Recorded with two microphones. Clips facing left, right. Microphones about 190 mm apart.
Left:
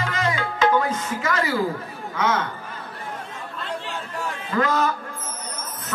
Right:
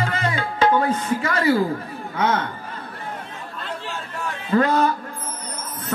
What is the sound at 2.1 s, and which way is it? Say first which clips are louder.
Speech: right 1 dB; 35° right (ahead or behind).